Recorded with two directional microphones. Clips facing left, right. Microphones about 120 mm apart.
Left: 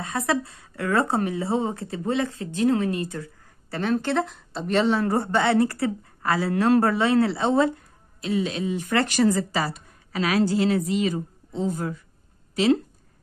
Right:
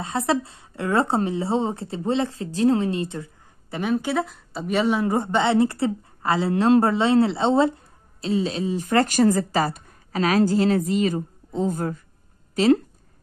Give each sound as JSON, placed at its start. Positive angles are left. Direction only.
{"t": 0.0, "sound": "a woman's voice", "side_deg": -25}
{"t": 3.7, "sound": "a woman's voice", "side_deg": -10}